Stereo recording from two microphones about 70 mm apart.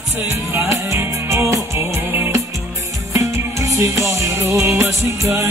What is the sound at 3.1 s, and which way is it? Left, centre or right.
Music, right.